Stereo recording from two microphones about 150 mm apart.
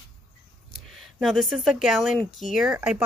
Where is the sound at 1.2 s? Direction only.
Centre (ahead or behind).